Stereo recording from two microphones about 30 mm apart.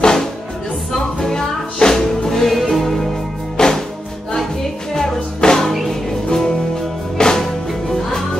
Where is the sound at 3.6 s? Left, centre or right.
Left.